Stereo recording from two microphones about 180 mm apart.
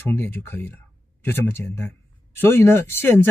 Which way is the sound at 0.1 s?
15° left (ahead or behind).